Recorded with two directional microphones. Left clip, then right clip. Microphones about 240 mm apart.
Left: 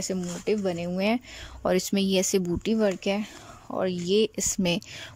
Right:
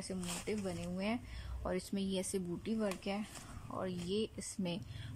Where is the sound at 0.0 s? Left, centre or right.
Left.